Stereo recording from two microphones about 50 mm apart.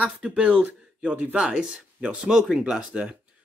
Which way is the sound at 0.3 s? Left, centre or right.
Right.